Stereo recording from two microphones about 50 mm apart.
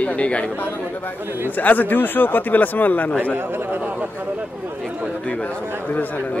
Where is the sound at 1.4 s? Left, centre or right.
Left.